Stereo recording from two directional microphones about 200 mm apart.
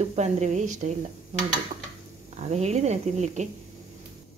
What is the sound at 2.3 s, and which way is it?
A woman's voice, 35° right (ahead or behind).